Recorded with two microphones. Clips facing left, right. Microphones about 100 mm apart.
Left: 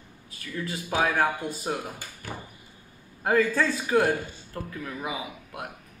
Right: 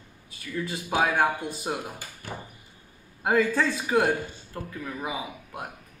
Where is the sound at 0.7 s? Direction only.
10° right (ahead or behind).